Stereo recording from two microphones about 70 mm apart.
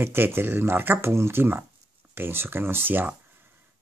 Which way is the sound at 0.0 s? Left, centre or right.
Right.